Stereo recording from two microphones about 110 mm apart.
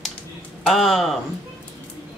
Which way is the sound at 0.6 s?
Centre (ahead or behind).